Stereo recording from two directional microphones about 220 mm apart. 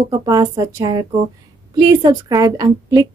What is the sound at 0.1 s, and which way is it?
Speech, 20° right (ahead or behind).